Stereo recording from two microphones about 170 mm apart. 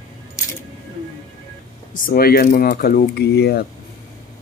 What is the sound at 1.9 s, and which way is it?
Speech, 55° left (ahead or behind).